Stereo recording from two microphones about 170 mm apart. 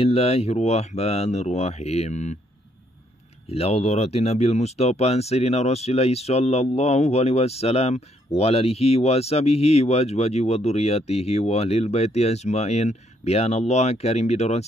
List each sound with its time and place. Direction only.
0.0 s speech: 35° left (ahead or behind)
3.4 s speech: 35° left (ahead or behind)